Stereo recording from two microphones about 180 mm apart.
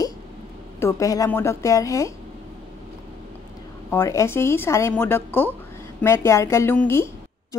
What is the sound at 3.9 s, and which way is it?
Speech, 15° left (ahead or behind).